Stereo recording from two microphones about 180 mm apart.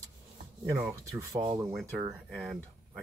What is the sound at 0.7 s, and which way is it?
Speech, 15° right (ahead or behind).